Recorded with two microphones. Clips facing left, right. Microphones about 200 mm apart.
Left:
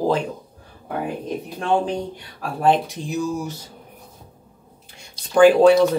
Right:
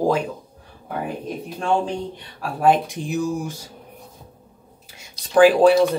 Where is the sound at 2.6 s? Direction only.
10° right (ahead or behind).